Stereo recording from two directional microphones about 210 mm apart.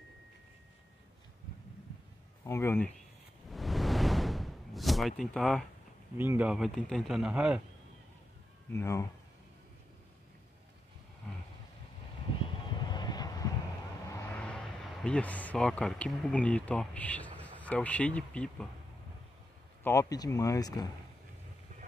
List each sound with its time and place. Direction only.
2.4 s speech: 15° left (ahead or behind)
3.4 s a sound: centre (ahead or behind)
5.2 s a man's voice: centre (ahead or behind)
6.1 s a man's voice: 10° right (ahead or behind)
8.7 s speech: 15° left (ahead or behind)
12.8 s vehicle: 20° left (ahead or behind)
14.1 s speech: 5° left (ahead or behind)
19.8 s speech: 15° left (ahead or behind)